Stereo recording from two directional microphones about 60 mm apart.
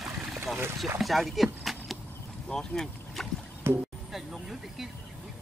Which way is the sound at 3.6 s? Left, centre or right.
Right.